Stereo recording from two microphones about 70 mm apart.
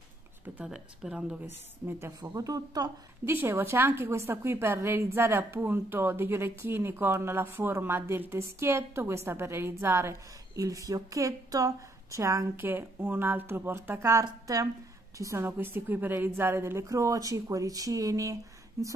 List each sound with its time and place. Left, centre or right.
0.7 s speech: centre
1.9 s speech: right
3.3 s a woman's voice: right
10.5 s speech: right
12.5 s a woman's voice: right
15.4 s speech: right
18.8 s speech: right